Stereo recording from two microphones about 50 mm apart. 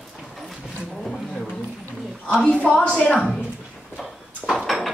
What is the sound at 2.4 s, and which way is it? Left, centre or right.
Speech, left.